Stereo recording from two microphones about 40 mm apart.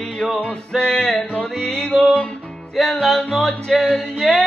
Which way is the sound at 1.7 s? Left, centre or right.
Left.